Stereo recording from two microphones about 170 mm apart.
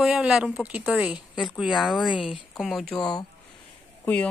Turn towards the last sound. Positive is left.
turn(degrees=10)  # may be behind; listen again after turning